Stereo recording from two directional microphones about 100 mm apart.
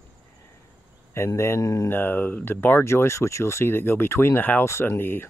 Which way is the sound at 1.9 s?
20° left (ahead or behind).